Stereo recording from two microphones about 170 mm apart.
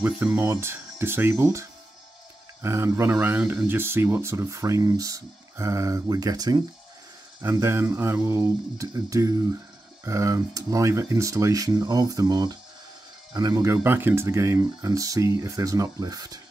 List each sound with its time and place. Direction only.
0.0 s speech: 10° right (ahead or behind)